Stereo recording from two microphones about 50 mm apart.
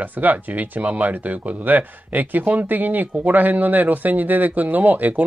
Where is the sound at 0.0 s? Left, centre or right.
Right.